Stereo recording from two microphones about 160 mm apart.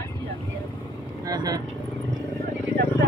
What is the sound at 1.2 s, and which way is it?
Speech, 25° right (ahead or behind).